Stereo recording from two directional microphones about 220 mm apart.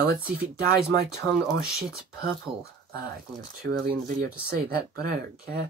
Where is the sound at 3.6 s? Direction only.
45° right (ahead or behind).